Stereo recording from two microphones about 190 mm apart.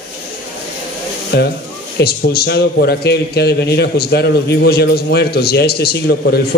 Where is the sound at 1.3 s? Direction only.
60° left (ahead or behind).